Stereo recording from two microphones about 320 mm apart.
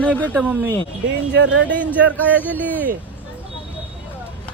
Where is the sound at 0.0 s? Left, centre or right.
Centre.